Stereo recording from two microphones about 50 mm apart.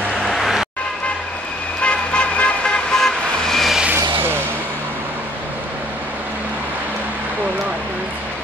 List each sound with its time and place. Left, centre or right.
0.1 s vehicle: centre
1.8 s vehicle: left; by 3.7 s centre
3.9 s vehicle: right